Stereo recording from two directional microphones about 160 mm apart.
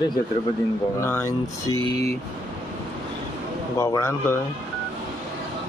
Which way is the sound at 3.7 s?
20° left (ahead or behind).